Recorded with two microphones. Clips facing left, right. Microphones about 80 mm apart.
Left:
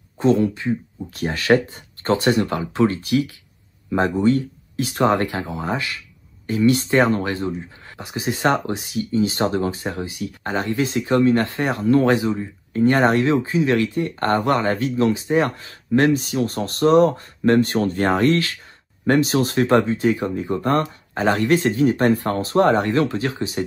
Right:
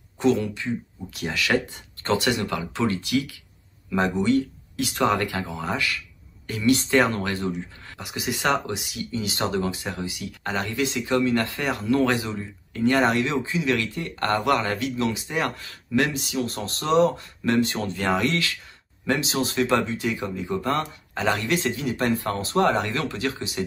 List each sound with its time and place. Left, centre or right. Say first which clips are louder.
0.2 s speech: left 4 dB; left
1.1 s speech: left 6 dB; left
19.8 s speech: left 7 dB; left
22.6 s speech: left 6 dB; left